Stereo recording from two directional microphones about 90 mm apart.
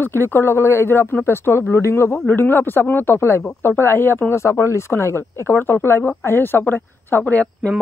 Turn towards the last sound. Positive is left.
turn(degrees=15)  # may be behind; listen again after turning